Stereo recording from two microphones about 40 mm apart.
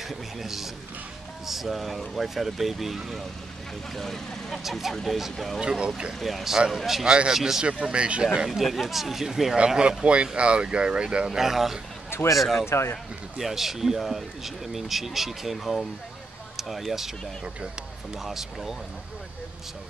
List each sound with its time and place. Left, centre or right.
0.0 s speech: centre
4.6 s speech: centre
5.6 s speech: centre
6.1 s speech: centre
7.1 s speech: right
7.3 s speech: centre
7.6 s speech: right
8.5 s speech: centre
10.0 s speech: right
11.2 s speech: centre
18.1 s speech: centre